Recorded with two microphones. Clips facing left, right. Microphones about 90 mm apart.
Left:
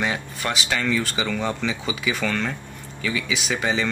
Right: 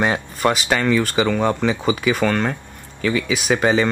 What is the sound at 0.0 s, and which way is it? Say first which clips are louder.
Speech: right 7 dB; 45° right (ahead or behind).